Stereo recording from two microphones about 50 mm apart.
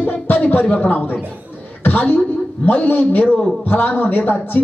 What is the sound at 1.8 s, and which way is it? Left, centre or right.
A man's voice, left.